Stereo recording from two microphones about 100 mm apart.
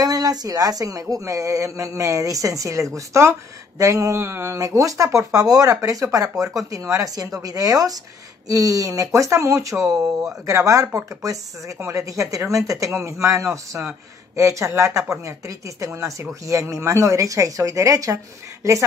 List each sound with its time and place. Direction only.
0.0 s speech: 40° right (ahead or behind)